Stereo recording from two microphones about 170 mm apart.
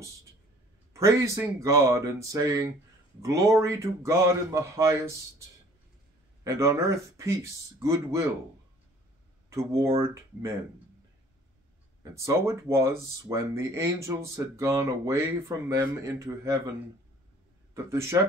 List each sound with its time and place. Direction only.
0.9 s speech: 15° right (ahead or behind)
6.4 s speech: 15° right (ahead or behind)
9.5 s speech: 15° right (ahead or behind)
12.0 s speech: 20° right (ahead or behind)
17.8 s speech: 15° right (ahead or behind)